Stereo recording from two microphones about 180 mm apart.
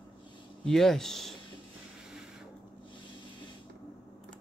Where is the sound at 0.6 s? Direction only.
5° left (ahead or behind).